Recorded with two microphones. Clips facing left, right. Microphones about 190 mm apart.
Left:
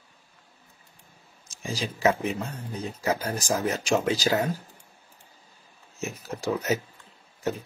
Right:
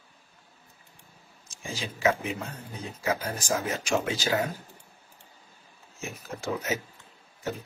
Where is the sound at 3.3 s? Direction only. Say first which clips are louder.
Left 3 dB; 40° left (ahead or behind).